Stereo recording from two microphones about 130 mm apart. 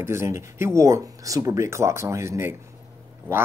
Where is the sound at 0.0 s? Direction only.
20° right (ahead or behind).